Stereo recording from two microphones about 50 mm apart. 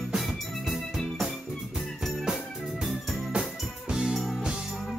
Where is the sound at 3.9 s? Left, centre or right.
Centre.